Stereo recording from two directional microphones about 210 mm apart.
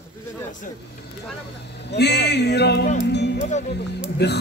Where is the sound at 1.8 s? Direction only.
50° left (ahead or behind).